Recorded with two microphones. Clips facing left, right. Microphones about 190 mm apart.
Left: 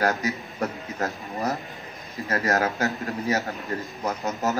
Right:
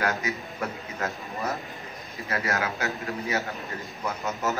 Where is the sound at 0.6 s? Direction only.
40° left (ahead or behind).